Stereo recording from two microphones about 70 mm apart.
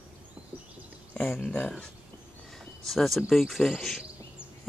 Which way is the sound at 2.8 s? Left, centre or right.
Centre.